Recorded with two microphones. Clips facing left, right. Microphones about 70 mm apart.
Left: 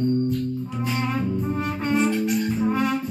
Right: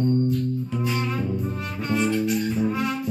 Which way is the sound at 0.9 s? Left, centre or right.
Left.